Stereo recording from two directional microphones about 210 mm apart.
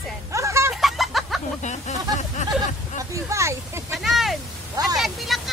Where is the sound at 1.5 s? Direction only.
35° left (ahead or behind).